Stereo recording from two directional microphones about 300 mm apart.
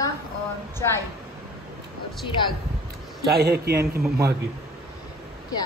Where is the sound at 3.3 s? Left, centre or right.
Right.